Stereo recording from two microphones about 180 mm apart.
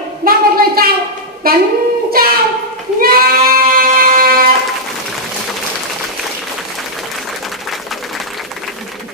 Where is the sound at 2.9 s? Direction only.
55° right (ahead or behind).